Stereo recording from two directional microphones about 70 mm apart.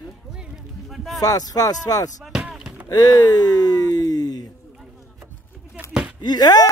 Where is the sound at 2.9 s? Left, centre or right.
Left.